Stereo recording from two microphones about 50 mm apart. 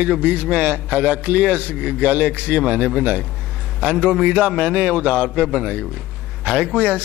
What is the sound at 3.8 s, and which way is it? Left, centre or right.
Mantra, centre.